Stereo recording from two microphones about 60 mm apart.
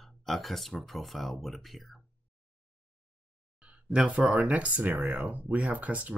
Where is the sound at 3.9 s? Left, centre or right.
Centre.